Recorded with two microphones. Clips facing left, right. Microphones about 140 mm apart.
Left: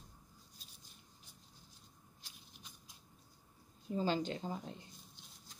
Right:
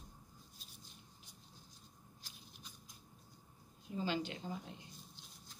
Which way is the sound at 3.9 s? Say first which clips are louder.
Left 4 dB; 40° left (ahead or behind).